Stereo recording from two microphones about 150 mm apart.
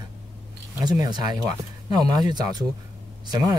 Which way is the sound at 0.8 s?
25° right (ahead or behind).